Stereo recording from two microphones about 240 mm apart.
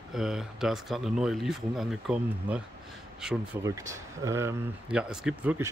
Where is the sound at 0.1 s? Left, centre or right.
Centre.